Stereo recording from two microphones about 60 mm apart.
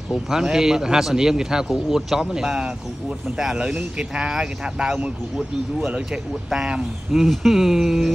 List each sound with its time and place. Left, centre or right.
0.1 s a man's voice: centre